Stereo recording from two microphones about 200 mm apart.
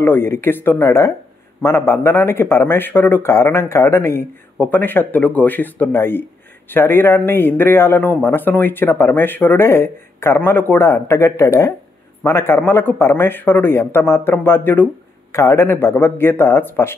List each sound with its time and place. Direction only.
0.0 s a man's voice: 10° left (ahead or behind)